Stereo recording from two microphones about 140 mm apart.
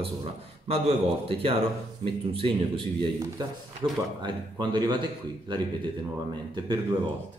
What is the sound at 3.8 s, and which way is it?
A man's voice, 35° right (ahead or behind).